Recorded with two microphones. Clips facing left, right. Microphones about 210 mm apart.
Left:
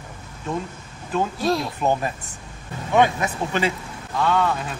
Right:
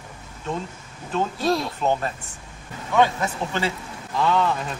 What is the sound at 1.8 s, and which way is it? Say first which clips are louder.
Speech: left 1 dB; 10° left (ahead or behind).